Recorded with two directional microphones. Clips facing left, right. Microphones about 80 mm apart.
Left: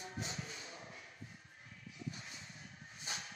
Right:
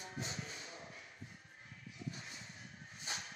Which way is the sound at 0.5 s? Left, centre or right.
Left.